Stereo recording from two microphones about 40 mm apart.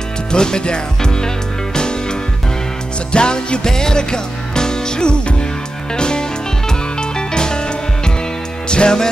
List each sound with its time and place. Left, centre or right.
0.3 s speech: centre
3.1 s music: left
8.6 s music: left